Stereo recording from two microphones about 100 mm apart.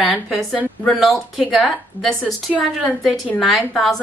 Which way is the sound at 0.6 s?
15° left (ahead or behind).